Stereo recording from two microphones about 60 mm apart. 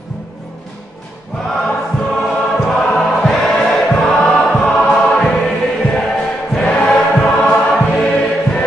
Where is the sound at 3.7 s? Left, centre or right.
Left.